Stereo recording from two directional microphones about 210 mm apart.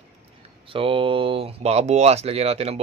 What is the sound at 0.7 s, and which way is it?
A man's voice, 25° right (ahead or behind).